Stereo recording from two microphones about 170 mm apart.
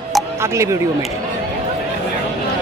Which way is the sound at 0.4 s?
15° right (ahead or behind).